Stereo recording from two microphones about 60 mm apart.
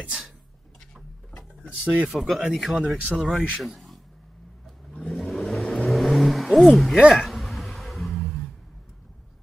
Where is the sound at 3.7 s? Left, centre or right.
Centre.